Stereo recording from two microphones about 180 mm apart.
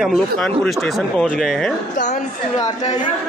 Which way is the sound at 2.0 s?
45° left (ahead or behind).